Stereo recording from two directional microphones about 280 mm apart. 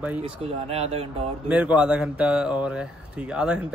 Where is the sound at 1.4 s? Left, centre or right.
Centre.